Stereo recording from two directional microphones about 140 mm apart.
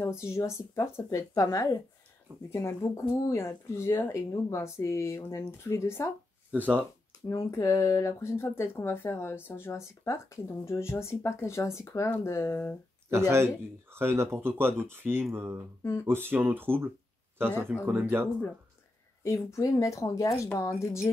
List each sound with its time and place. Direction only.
0.0 s speech: 20° left (ahead or behind)
6.5 s speech: 10° right (ahead or behind)
7.2 s speech: 20° left (ahead or behind)
13.9 s speech: 15° right (ahead or behind)
15.8 s speech: 15° left (ahead or behind)
16.1 s speech: 15° right (ahead or behind)
19.2 s speech: 20° left (ahead or behind)